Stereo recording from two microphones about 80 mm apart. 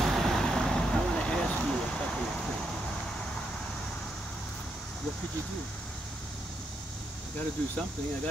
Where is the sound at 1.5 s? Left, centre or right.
Centre.